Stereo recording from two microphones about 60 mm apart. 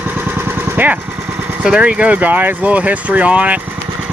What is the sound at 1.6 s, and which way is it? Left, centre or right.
Speech, centre.